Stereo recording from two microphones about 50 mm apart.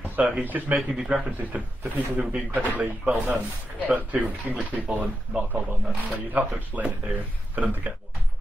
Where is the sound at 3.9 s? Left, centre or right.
Right.